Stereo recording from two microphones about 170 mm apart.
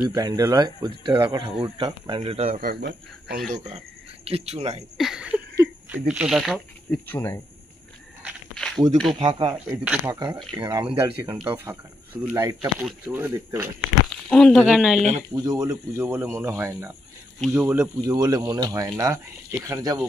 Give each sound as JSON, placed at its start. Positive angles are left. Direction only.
{"t": 0.0, "sound": "speech", "side_deg": -20}
{"t": 2.6, "sound": "speech", "side_deg": -60}
{"t": 3.4, "sound": "speech", "side_deg": -45}
{"t": 4.9, "sound": "speech", "side_deg": -5}
{"t": 7.1, "sound": "speech", "side_deg": 15}
{"t": 8.5, "sound": "a sound", "side_deg": 0}
{"t": 8.9, "sound": "speech", "side_deg": 0}
{"t": 9.2, "sound": "speech", "side_deg": -35}
{"t": 9.7, "sound": "speech", "side_deg": -10}
{"t": 10.1, "sound": "speech", "side_deg": -25}
{"t": 11.0, "sound": "speech", "side_deg": -15}
{"t": 14.3, "sound": "speech", "side_deg": 5}
{"t": 15.3, "sound": "speech", "side_deg": -25}